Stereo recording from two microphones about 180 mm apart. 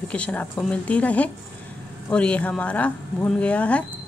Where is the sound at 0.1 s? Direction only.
5° left (ahead or behind).